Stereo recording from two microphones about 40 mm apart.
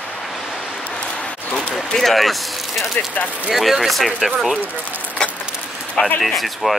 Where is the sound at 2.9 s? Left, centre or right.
Left.